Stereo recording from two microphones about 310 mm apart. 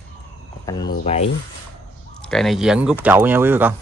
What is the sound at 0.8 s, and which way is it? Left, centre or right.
Speech, left.